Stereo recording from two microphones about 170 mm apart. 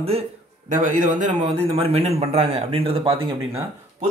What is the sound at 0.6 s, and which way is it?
A man's voice, 50° right (ahead or behind).